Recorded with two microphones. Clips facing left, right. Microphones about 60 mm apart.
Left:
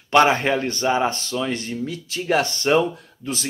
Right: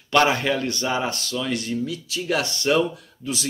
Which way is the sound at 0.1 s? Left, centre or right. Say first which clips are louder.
Left 3 dB; left.